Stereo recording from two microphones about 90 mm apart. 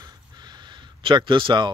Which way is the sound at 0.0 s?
55° right (ahead or behind).